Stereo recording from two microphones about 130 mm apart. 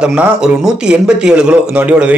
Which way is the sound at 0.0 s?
5° right (ahead or behind).